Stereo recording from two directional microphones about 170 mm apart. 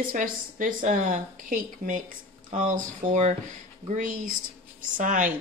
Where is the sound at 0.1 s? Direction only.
50° right (ahead or behind).